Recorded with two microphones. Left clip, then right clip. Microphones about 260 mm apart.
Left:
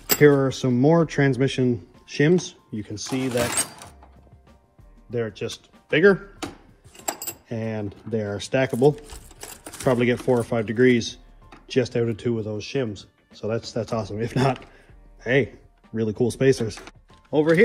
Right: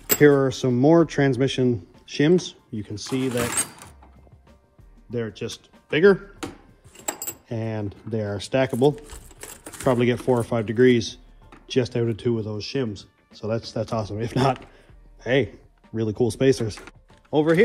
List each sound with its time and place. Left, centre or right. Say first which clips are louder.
0.2 s speech: even; right; by 3.5 s centre
5.1 s speech: left 2 dB; centre
6.9 s a sound: left 1 dB; centre
7.4 s speech: even; right
9.1 s a sound: left 1 dB; centre
9.8 s speech: even; right
12.9 s music: even; right
13.4 s speech: even; centre